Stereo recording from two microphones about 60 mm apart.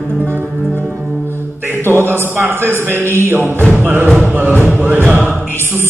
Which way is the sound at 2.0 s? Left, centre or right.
Right.